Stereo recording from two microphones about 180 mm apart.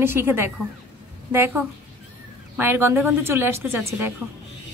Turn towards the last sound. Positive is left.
turn(degrees=-10)  # may be behind; listen again after turning